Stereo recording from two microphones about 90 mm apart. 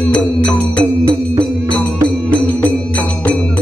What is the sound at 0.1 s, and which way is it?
Music, 15° left (ahead or behind).